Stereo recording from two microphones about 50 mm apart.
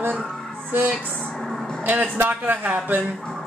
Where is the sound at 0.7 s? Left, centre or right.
Right.